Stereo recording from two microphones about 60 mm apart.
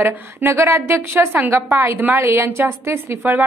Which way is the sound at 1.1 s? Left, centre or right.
Right.